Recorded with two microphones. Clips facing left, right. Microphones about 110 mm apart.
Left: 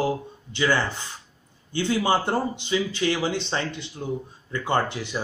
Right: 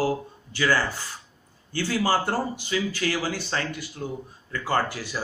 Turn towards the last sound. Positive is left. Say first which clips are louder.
# left 1 dB
turn(degrees=20)  # may be behind; listen again after turning